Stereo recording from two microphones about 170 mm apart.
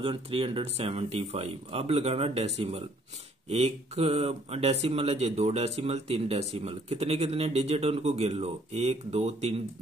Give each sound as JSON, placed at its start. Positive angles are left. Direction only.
{"t": 0.0, "sound": "speech", "side_deg": -30}